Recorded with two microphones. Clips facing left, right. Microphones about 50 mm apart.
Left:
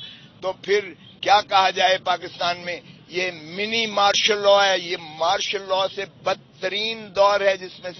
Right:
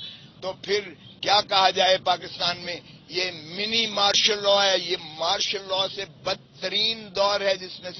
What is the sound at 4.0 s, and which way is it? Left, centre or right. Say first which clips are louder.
A man's voice: left 5 dB; centre.